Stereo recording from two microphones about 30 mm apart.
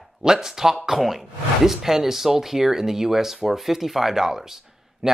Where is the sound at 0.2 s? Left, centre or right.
Centre.